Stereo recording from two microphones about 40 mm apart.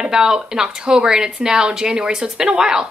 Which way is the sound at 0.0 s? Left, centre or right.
Centre.